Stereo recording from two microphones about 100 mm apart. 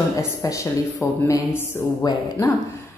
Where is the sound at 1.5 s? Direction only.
20° left (ahead or behind).